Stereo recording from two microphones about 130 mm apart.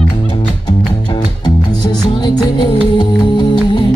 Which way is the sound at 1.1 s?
35° left (ahead or behind).